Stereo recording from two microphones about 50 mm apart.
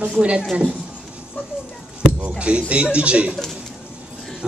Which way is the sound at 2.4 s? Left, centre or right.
Right.